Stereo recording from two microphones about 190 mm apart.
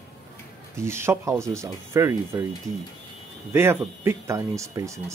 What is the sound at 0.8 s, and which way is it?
Speech, 15° right (ahead or behind).